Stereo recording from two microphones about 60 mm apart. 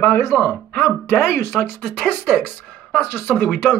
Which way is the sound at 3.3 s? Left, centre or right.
Left.